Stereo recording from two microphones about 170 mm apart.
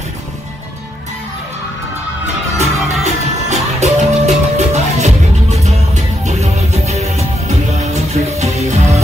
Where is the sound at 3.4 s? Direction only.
40° right (ahead or behind).